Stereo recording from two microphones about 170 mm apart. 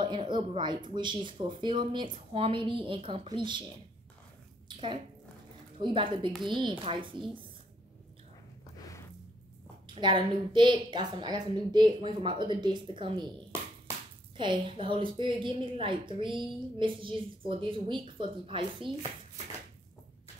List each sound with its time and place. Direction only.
0.0 s a woman's voice: 30° right (ahead or behind)
8.7 s a sound: 20° left (ahead or behind)
9.9 s a woman's voice: 30° right (ahead or behind)
14.3 s a woman's voice: 30° right (ahead or behind)